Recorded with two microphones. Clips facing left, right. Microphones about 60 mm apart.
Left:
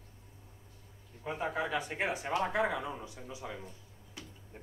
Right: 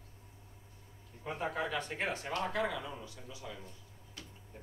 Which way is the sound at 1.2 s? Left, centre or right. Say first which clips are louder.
Left 2 dB; centre.